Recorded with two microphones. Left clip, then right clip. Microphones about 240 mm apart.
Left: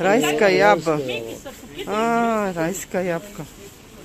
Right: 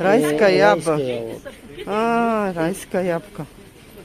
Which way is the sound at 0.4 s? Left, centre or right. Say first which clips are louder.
Even; centre.